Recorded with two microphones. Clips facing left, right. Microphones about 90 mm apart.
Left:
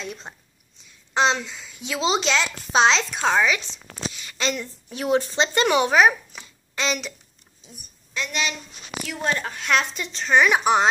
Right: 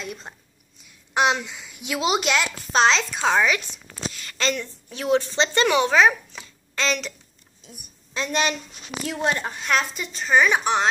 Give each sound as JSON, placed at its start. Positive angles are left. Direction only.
{"t": 0.0, "sound": "a woman's voice", "side_deg": -5}
{"t": 2.7, "sound": "a woman's voice", "side_deg": 0}
{"t": 4.1, "sound": "a sound", "side_deg": 10}
{"t": 4.8, "sound": "a woman's voice", "side_deg": 20}
{"t": 8.1, "sound": "a woman's voice", "side_deg": -30}
{"t": 9.5, "sound": "a woman's voice", "side_deg": 0}